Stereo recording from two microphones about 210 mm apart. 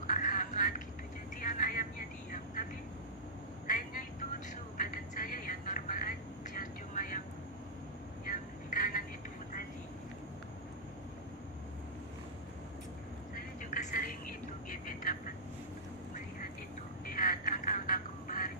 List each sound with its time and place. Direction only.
0.1 s a sound: 40° left (ahead or behind)
1.4 s vehicle: 40° left (ahead or behind)
3.6 s telephone: 40° left (ahead or behind)
4.7 s a sound: 40° left (ahead or behind)
6.6 s vehicle: 40° left (ahead or behind)
8.3 s vehicle: 40° left (ahead or behind)
13.3 s vehicle: 35° left (ahead or behind)
17.0 s quack: 40° left (ahead or behind)